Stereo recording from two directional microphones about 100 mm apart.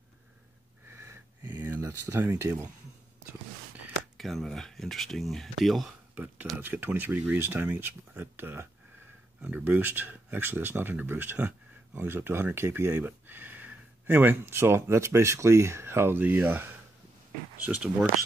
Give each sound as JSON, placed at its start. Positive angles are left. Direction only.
{"t": 0.8, "sound": "wheeze", "side_deg": -25}
{"t": 1.6, "sound": "speech", "side_deg": -20}
{"t": 4.2, "sound": "speech", "side_deg": 0}
{"t": 6.1, "sound": "speech", "side_deg": -15}